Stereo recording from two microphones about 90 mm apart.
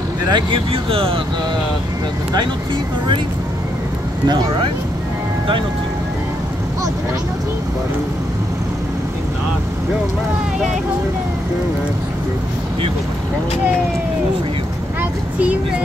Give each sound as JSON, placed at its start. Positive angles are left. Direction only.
{"t": 0.3, "sound": "speech", "side_deg": -80}